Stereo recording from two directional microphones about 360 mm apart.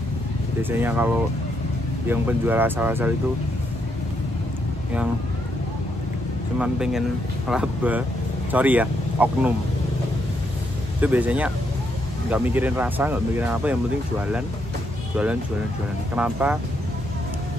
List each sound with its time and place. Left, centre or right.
0.6 s speech: centre
6.6 s speech: centre
11.0 s speech: centre
16.2 s speech: centre